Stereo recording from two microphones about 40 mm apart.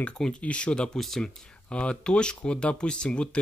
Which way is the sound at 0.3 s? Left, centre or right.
Left.